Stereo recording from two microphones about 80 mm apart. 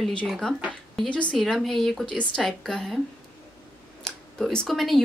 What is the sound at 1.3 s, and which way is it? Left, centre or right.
A woman's voice, centre.